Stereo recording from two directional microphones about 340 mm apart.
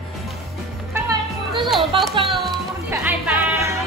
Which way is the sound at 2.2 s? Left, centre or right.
Centre.